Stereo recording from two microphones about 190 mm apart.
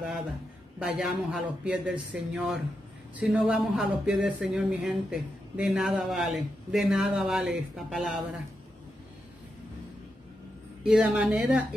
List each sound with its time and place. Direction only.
0.7 s speech: 5° right (ahead or behind)
10.8 s speech: 5° right (ahead or behind)